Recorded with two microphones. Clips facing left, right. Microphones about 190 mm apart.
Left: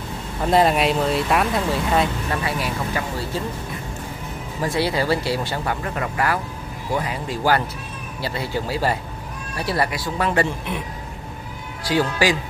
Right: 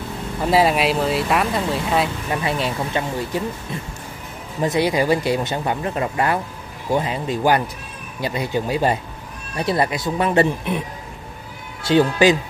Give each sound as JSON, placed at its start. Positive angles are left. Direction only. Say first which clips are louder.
{"t": 0.4, "sound": "speech", "louder": "even", "side_deg": -5}
{"t": 2.4, "sound": "speech", "louder": "right 2 dB", "side_deg": -25}
{"t": 4.6, "sound": "speech", "louder": "right 3 dB", "side_deg": -20}
{"t": 11.8, "sound": "speech", "louder": "right 5 dB", "side_deg": -25}